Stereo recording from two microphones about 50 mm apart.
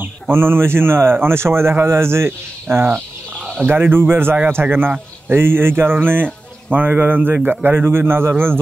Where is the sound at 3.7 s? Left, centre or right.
Right.